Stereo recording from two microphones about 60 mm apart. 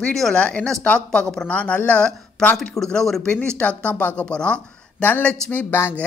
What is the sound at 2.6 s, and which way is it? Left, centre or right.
Speech, centre.